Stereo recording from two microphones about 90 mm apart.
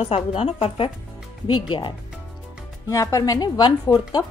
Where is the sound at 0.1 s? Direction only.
90° left.